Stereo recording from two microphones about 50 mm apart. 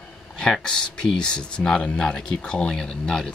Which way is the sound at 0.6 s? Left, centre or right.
Centre.